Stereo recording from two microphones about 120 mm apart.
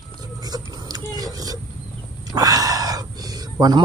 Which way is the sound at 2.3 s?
30° right (ahead or behind).